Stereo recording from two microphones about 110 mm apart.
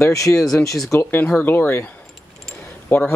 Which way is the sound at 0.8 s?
20° left (ahead or behind).